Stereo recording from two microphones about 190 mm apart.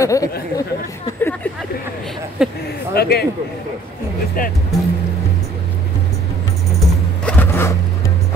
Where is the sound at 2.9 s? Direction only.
55° left (ahead or behind).